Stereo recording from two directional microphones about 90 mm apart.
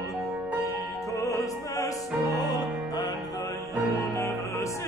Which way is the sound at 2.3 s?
50° left (ahead or behind).